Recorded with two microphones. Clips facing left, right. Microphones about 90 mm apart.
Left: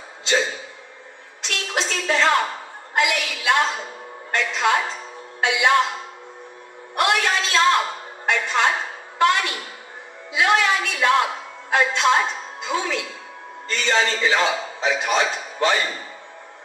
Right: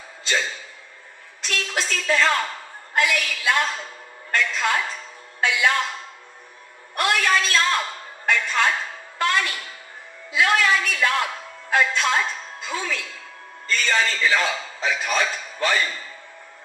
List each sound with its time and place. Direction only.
0.2 s a sound: 20° left (ahead or behind)
1.4 s a woman's voice: 20° left (ahead or behind)
7.0 s a man's voice: 20° left (ahead or behind)